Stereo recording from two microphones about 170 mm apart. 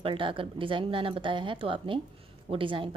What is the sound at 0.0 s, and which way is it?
A woman's voice, 30° right (ahead or behind).